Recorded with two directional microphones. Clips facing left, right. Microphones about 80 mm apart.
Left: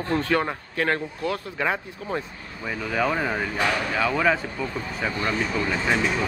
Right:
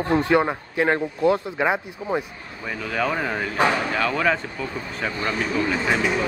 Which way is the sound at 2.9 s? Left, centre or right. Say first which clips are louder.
Even; centre.